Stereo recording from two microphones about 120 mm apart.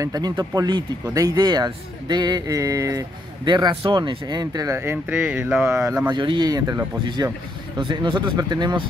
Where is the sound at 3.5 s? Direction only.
40° right (ahead or behind).